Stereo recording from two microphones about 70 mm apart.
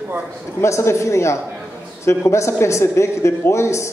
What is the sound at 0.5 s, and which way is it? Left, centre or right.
A man's voice, left.